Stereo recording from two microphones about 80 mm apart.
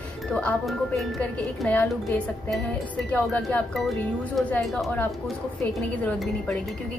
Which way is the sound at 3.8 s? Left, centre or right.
Centre.